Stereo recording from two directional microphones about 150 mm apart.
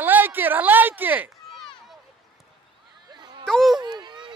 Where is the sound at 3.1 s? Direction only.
30° right (ahead or behind).